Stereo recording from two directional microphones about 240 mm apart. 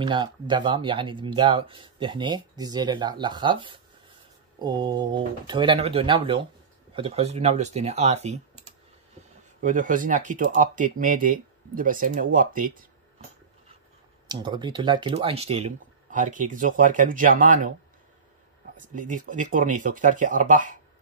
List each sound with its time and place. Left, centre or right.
0.0 s speech: centre
9.6 s speech: right
14.2 s speech: centre; by 17.6 s right
18.8 s speech: right